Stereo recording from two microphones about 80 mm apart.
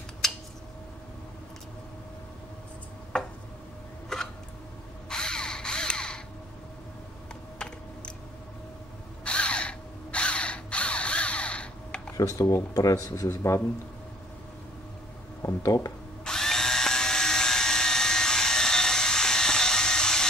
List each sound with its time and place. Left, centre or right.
0.2 s a sound: centre
3.1 s a sound: centre
7.5 s typing: centre
9.2 s mechanisms: centre
12.2 s speech: left
15.4 s speech: left
16.3 s drill: centre